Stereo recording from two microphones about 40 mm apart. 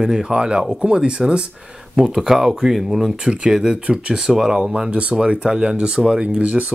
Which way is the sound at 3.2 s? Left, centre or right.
Right.